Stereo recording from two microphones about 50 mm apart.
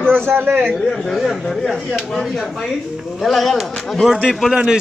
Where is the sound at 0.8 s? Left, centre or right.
Centre.